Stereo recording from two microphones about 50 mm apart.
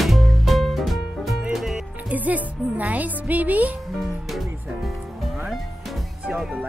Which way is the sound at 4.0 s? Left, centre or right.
Centre.